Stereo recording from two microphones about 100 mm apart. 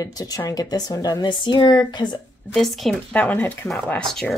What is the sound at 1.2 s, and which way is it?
Speech, 50° left (ahead or behind).